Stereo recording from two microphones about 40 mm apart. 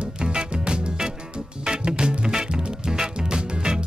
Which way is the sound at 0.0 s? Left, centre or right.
Right.